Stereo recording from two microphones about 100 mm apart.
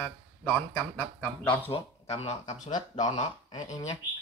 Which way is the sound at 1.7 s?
85° left.